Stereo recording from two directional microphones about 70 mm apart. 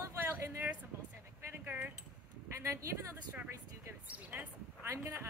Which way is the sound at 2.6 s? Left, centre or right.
Right.